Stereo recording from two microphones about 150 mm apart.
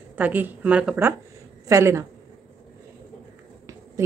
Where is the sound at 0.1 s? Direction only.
10° right (ahead or behind).